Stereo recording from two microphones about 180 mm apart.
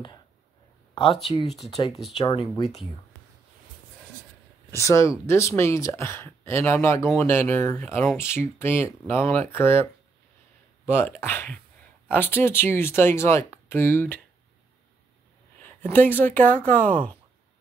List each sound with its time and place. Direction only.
1.9 s speech: centre (ahead or behind)
2.5 s speech: 30° left (ahead or behind)
4.6 s speech: 15° left (ahead or behind)
10.9 s speech: 10° left (ahead or behind)
15.8 s speech: 10° left (ahead or behind)